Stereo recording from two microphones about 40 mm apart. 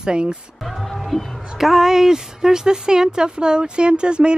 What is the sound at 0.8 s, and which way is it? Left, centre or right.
Music, centre.